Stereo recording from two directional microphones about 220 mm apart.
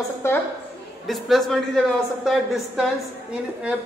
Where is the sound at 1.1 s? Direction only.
Centre (ahead or behind).